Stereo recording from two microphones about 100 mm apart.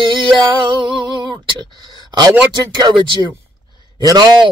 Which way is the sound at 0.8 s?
50° right (ahead or behind).